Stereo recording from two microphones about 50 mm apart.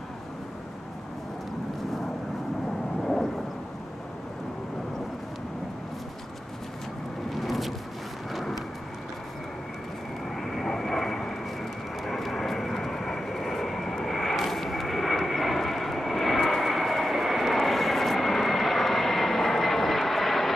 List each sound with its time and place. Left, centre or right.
3.0 s vehicle: centre
7.3 s a sound: centre
8.3 s vehicle: centre
10.3 s vehicle: centre